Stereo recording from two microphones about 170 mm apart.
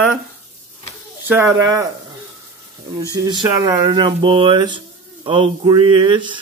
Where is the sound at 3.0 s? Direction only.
20° right (ahead or behind).